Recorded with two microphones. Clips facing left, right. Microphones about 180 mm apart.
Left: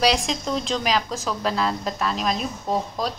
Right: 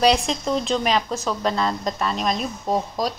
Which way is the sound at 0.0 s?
Centre (ahead or behind).